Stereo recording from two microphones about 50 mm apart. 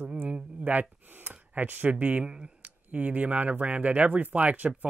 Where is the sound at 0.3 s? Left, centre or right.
Right.